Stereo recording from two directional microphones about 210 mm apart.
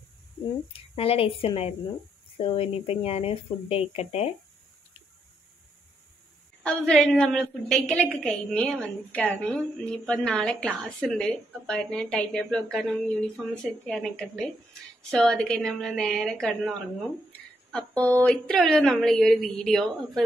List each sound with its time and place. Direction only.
0.7 s speech: 25° left (ahead or behind)
6.6 s a woman's voice: 5° left (ahead or behind)
17.3 s a sound: 5° left (ahead or behind)
18.2 s a woman's voice: 5° left (ahead or behind)